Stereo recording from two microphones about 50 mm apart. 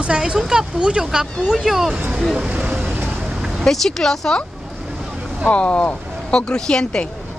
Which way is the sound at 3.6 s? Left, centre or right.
Centre.